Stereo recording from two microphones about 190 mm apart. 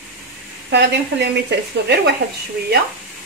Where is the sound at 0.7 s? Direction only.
65° right (ahead or behind).